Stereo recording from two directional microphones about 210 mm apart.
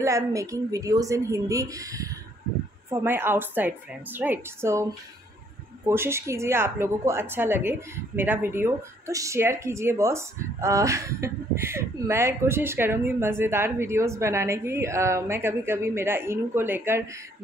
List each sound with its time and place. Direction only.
0.0 s a woman's voice: 15° right (ahead or behind)